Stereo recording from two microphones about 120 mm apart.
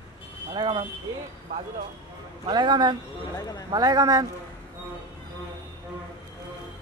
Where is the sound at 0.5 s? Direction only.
45° right (ahead or behind).